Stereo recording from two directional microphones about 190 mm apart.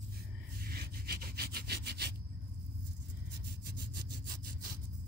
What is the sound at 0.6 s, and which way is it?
Rub, 55° right (ahead or behind).